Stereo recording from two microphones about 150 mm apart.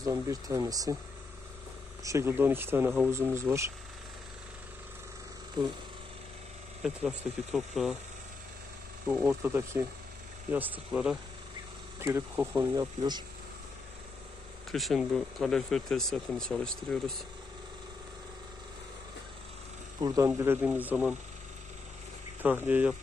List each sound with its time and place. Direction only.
0.0 s speech: 25° right (ahead or behind)
2.0 s speech: 15° right (ahead or behind)
6.8 s speech: 5° right (ahead or behind)
9.1 s speech: 10° right (ahead or behind)
12.0 s speech: 20° right (ahead or behind)
12.7 s speech: 25° right (ahead or behind)
14.7 s speech: centre (ahead or behind)
20.0 s speech: 25° right (ahead or behind)
20.2 s speech: 15° right (ahead or behind)
22.4 s speech: 10° right (ahead or behind)